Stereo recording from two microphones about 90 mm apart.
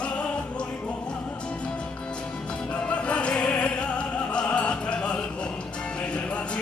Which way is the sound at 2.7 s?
15° left (ahead or behind).